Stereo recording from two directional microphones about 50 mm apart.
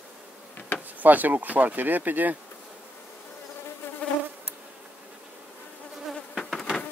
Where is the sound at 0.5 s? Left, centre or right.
Left.